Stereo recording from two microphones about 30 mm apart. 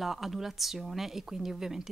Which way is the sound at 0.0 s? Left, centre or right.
Centre.